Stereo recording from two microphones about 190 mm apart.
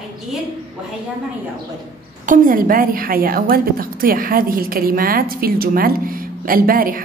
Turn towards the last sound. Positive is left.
turn(degrees=-50)  # may be behind; listen again after turning